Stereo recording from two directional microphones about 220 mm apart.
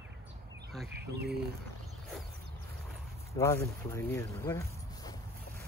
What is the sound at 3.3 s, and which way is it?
Speech, 15° left (ahead or behind).